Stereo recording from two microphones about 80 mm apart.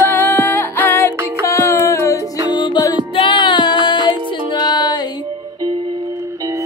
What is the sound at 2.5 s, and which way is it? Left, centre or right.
Music, left.